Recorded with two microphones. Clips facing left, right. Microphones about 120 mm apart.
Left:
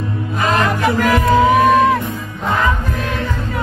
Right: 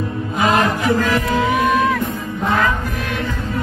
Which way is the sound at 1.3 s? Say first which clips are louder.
Left 7 dB; 40° left (ahead or behind).